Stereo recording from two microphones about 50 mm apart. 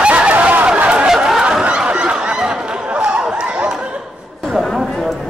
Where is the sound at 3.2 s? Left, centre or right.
Centre.